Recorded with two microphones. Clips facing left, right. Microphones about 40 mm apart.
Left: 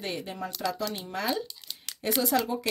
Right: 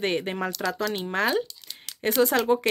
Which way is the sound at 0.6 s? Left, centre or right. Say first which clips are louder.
Right 4 dB; right.